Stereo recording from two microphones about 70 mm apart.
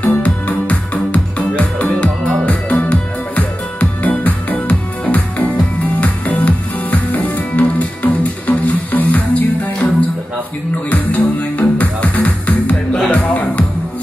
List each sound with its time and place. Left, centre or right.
0.0 s music: centre